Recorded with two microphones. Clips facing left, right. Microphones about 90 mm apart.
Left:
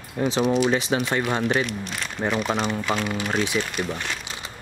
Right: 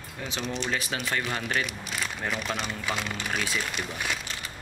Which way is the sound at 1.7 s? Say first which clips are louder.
Left 3 dB; 5° right (ahead or behind).